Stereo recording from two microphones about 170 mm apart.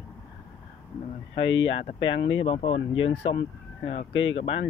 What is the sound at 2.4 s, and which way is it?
Speech, 35° left (ahead or behind).